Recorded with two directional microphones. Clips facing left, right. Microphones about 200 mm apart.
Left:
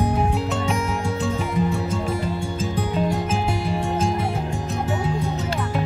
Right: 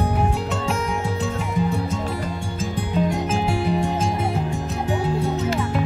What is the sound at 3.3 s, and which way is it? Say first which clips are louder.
Music: right 1 dB; centre (ahead or behind).